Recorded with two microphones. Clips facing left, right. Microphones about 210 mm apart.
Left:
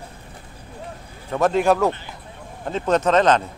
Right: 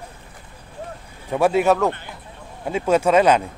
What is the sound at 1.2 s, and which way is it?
Speech, 10° right (ahead or behind).